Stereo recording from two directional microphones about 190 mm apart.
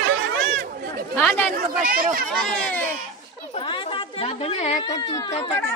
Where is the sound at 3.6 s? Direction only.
25° left (ahead or behind).